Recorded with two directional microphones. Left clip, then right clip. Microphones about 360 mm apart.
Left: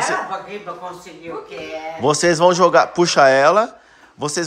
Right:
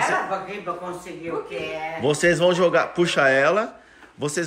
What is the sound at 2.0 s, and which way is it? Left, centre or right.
Speech, centre.